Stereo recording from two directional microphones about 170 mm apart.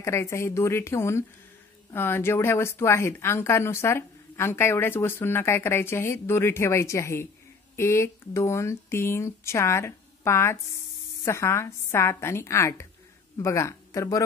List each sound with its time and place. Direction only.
0.0 s speech: 15° left (ahead or behind)